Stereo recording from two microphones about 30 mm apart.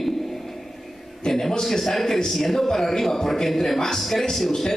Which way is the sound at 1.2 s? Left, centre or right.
Centre.